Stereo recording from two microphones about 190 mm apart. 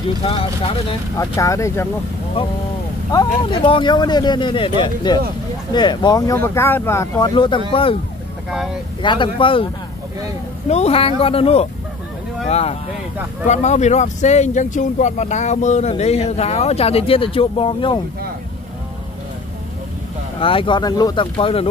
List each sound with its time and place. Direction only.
0.2 s speech: 30° left (ahead or behind)
1.1 s speech: 15° left (ahead or behind)
3.1 s speech: 20° left (ahead or behind)
9.0 s speech: 25° left (ahead or behind)
10.7 s speech: 35° left (ahead or behind)
20.3 s speech: 30° left (ahead or behind)